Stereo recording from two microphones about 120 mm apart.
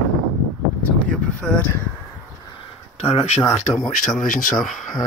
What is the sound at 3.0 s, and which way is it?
Speech, 65° left (ahead or behind).